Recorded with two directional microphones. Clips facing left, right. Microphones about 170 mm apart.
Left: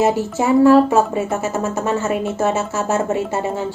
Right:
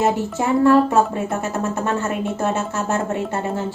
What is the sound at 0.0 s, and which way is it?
Speech, 5° left (ahead or behind).